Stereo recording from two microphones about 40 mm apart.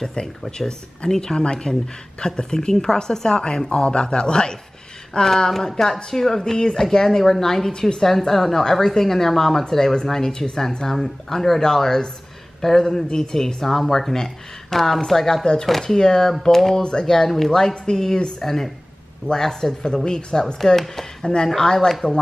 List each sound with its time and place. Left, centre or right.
0.0 s a woman's voice: centre
5.3 s speech: centre
20.5 s speech: centre